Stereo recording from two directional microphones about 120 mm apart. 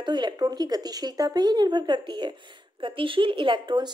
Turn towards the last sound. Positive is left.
turn(degrees=-40)  # may be behind; listen again after turning